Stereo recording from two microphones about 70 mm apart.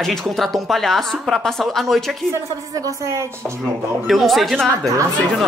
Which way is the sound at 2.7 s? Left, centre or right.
Right.